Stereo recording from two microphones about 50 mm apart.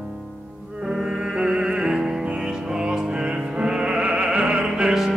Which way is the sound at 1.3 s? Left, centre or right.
Centre.